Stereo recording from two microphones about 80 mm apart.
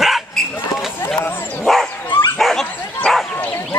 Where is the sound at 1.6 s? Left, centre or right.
Centre.